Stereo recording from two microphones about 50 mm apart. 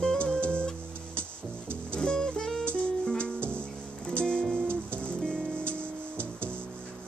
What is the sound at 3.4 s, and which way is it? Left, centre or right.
Music, right.